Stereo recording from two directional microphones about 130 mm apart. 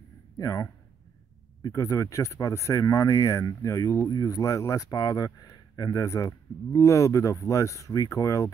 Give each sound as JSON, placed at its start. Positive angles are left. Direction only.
{"t": 0.4, "sound": "speech", "side_deg": 20}